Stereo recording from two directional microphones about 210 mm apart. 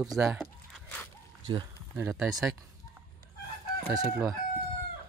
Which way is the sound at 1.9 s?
15° right (ahead or behind).